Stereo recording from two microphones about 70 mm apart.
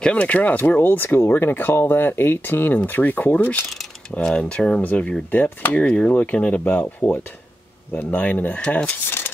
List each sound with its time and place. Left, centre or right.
0.0 s speech: centre